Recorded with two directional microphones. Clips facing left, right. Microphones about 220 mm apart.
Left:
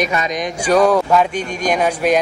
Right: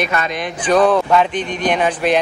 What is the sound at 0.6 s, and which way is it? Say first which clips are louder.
Speech: even; 10° left (ahead or behind).